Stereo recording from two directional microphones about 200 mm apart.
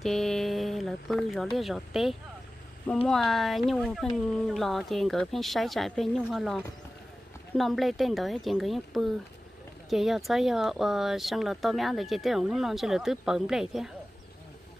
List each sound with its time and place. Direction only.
0.0 s speech: centre (ahead or behind)